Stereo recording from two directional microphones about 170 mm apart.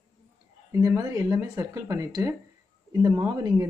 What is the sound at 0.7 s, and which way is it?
A woman's voice, 20° right (ahead or behind).